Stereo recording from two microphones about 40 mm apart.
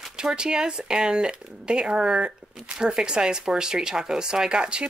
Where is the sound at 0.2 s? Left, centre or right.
Centre.